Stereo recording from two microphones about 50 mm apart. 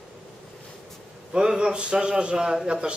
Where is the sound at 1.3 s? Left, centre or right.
Centre.